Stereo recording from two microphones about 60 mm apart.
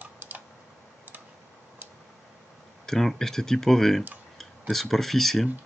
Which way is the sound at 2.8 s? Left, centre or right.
Centre.